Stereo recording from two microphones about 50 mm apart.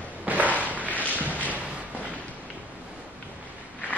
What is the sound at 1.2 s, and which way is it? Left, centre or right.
Thump, right.